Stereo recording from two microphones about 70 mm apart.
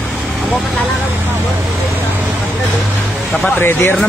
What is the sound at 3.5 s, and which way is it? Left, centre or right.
Speech, left.